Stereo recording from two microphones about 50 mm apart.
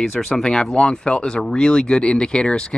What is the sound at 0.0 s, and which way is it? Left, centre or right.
Speech, centre.